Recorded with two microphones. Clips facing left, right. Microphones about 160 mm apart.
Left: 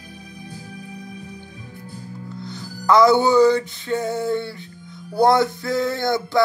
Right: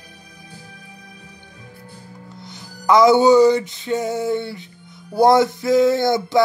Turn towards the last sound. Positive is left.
turn(degrees=-20)  # may be behind; listen again after turning